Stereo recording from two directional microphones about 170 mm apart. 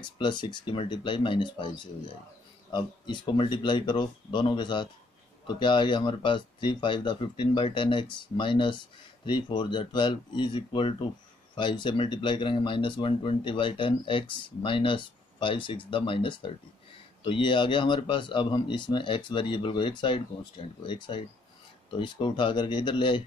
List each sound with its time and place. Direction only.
0.0 s speech: 25° left (ahead or behind)
2.7 s speech: 25° left (ahead or behind)